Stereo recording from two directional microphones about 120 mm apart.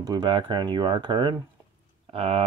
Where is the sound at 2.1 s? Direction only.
50° right (ahead or behind).